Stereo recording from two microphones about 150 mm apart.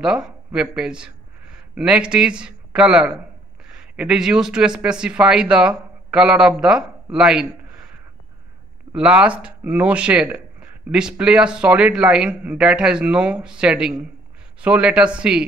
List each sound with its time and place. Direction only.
0.0 s speech: 5° right (ahead or behind)
8.9 s speech: 10° right (ahead or behind)